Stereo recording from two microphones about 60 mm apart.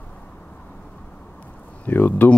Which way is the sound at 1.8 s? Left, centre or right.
Left.